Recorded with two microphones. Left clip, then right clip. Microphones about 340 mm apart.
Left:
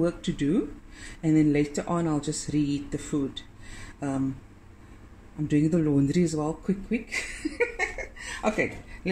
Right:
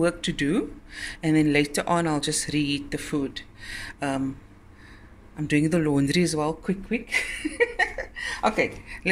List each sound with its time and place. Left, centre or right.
0.0 s speech: right
5.5 s speech: right